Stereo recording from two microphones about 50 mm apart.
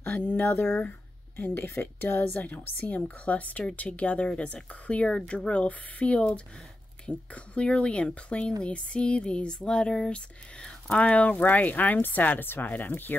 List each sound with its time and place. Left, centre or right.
0.0 s speech: left